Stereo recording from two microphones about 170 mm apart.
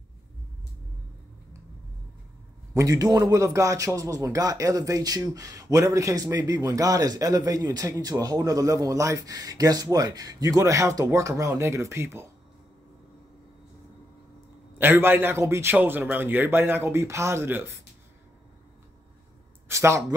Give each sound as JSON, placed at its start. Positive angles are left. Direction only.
{"t": 2.7, "sound": "a man's voice", "side_deg": -20}
{"t": 14.8, "sound": "a man's voice", "side_deg": -10}
{"t": 19.7, "sound": "a man's voice", "side_deg": -15}